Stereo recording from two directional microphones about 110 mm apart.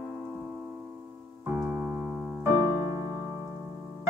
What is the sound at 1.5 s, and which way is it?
Keyboard, 15° right (ahead or behind).